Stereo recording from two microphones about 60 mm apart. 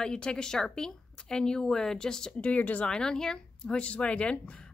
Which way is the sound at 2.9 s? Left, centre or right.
Centre.